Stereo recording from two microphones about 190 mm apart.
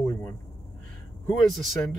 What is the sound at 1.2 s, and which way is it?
Speech, centre (ahead or behind).